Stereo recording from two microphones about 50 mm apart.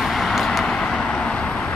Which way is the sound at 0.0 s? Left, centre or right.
Centre.